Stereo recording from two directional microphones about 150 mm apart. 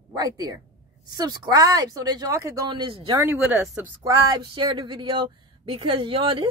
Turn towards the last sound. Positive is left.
turn(degrees=-35)  # may be behind; listen again after turning